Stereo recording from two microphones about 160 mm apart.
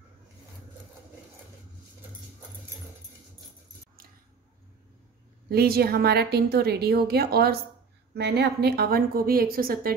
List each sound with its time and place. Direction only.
5.5 s a woman's voice: 70° right (ahead or behind)
8.1 s a woman's voice: 90° right; by 9.9 s 65° right (ahead or behind)